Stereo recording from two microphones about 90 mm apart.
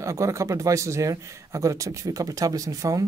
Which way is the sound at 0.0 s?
35° right (ahead or behind).